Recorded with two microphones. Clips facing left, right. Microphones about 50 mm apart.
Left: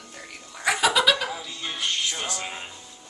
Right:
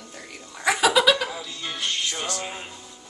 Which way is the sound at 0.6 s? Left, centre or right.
Centre.